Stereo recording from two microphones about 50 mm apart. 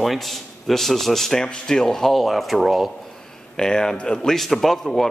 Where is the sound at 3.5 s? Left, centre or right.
Centre.